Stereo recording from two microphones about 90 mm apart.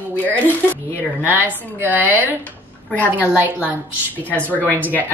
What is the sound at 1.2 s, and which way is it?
Speech, 20° right (ahead or behind).